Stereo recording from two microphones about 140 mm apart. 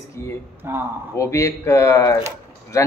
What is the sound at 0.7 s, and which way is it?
Speech, 15° right (ahead or behind).